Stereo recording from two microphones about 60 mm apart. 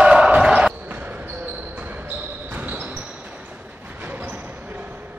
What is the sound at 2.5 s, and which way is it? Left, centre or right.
Basketball bounce, right.